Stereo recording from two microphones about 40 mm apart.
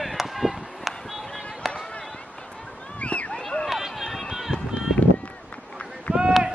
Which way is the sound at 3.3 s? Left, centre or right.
Centre.